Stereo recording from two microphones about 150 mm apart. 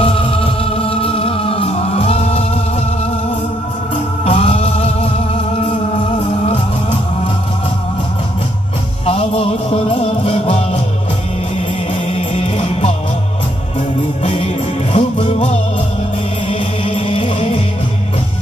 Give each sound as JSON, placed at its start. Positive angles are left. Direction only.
{"t": 0.0, "sound": "music", "side_deg": 40}
{"t": 3.9, "sound": "music", "side_deg": 45}
{"t": 9.0, "sound": "music", "side_deg": 40}
{"t": 11.9, "sound": "music", "side_deg": 45}
{"t": 14.2, "sound": "music", "side_deg": 45}